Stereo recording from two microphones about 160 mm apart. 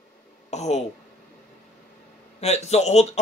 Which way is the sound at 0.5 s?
45° left (ahead or behind).